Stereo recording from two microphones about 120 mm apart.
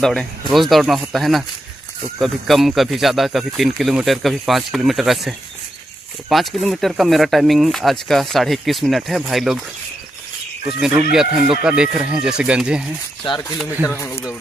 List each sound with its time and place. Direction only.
0.0 s speech: 5° left (ahead or behind)
6.3 s speech: centre (ahead or behind)
11.1 s speech: 5° right (ahead or behind)
13.2 s speech: 45° left (ahead or behind)
13.8 s speech: 20° left (ahead or behind)